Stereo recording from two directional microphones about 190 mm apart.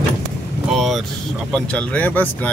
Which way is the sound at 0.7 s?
Centre (ahead or behind).